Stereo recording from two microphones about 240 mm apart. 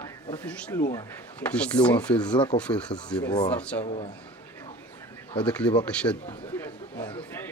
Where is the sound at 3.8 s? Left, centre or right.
Left.